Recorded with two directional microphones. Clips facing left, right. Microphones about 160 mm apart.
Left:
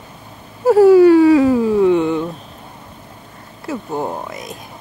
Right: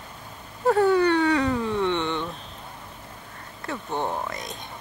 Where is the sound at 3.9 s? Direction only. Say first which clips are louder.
Left 4 dB; 35° left (ahead or behind).